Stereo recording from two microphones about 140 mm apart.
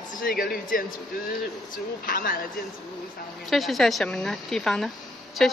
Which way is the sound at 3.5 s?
Centre (ahead or behind).